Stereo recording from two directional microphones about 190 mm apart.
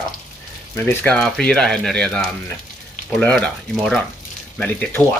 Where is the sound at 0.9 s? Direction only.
5° left (ahead or behind).